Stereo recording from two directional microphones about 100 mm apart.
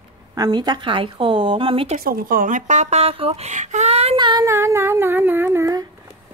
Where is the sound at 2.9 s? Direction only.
80° right.